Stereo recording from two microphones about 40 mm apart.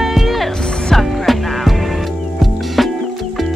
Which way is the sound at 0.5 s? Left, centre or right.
Centre.